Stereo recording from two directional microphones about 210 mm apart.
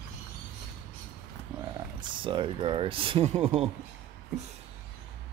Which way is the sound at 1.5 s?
20° right (ahead or behind).